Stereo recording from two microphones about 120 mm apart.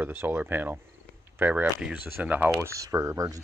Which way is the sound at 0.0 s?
20° right (ahead or behind).